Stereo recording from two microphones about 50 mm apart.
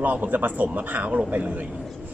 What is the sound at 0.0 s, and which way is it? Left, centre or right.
Speech, right.